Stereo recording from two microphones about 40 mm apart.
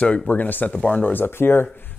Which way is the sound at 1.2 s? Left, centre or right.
Left.